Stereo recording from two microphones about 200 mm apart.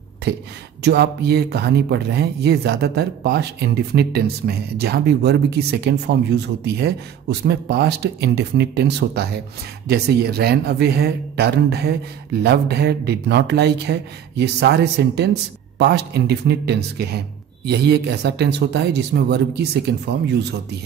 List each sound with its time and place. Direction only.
0.3 s speech: 55° right (ahead or behind)